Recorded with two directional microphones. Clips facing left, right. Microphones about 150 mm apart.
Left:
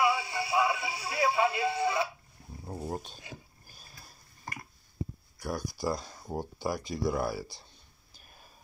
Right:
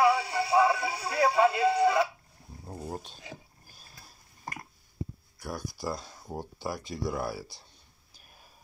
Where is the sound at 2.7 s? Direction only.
5° left (ahead or behind).